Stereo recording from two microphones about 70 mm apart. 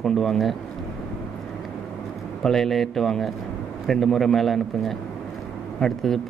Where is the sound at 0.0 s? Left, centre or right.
Centre.